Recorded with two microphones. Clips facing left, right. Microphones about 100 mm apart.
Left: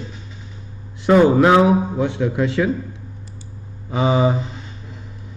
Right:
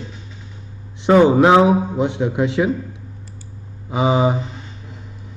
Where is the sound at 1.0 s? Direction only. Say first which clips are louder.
Right 1 dB; 20° right (ahead or behind).